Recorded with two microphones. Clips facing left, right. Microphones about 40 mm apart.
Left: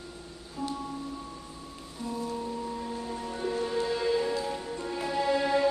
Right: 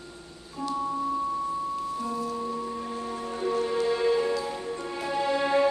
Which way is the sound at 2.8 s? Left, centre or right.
Centre.